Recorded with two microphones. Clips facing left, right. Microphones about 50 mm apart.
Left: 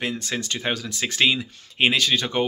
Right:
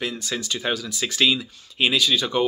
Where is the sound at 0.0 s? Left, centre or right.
Left.